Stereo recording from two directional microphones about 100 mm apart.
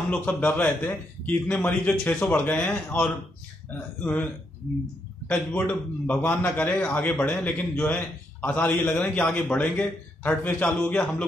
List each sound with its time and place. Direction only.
0.1 s a man's voice: 15° left (ahead or behind)
5.3 s a man's voice: 15° left (ahead or behind)